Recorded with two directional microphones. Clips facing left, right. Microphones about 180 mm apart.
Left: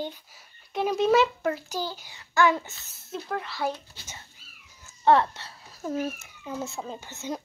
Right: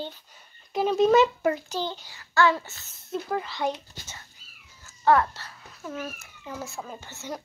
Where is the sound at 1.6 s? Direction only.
10° left (ahead or behind).